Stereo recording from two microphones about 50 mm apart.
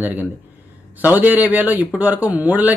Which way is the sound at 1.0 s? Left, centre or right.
Right.